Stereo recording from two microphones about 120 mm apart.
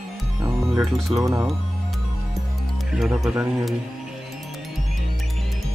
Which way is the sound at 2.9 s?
5° right (ahead or behind).